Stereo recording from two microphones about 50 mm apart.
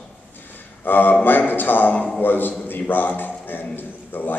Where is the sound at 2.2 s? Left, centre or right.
Left.